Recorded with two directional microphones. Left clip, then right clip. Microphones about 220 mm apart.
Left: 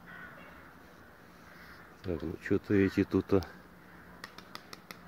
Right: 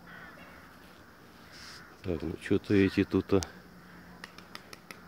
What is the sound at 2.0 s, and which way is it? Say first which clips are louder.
Speech: right 2 dB; 15° right (ahead or behind).